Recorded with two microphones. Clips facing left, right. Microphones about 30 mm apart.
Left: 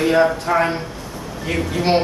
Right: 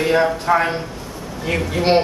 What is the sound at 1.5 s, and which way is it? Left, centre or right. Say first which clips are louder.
Speech: right 2 dB; centre.